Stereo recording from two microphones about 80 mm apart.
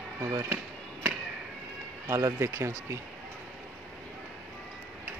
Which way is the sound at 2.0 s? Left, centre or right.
Right.